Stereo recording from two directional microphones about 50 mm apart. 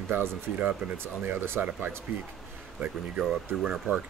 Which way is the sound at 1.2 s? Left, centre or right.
Right.